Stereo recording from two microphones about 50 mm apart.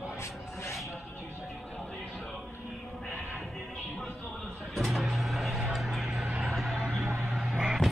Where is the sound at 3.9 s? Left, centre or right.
Centre.